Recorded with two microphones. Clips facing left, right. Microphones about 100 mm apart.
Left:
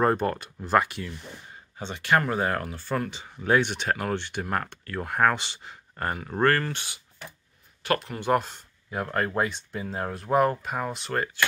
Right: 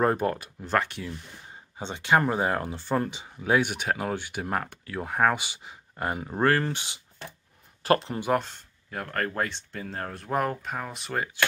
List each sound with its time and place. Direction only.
0.0 s speech: 5° right (ahead or behind)
0.6 s speech: 10° left (ahead or behind)
1.8 s speech: 20° right (ahead or behind)
3.3 s speech: 5° right (ahead or behind)
6.6 s speech: 20° right (ahead or behind)
7.8 s speech: 30° right (ahead or behind)
8.4 s speech: 10° left (ahead or behind)